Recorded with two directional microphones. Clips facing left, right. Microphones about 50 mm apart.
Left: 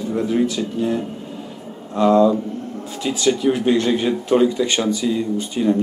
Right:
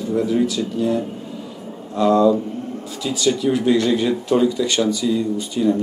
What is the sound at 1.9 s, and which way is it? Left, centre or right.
Speech, left.